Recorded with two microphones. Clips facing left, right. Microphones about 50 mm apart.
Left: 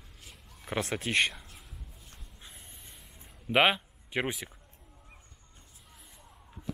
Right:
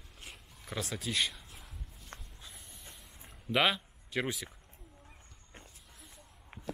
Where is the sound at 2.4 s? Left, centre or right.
Left.